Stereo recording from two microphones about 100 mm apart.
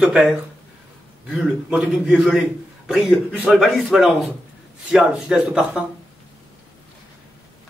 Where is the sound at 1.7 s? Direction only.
10° right (ahead or behind).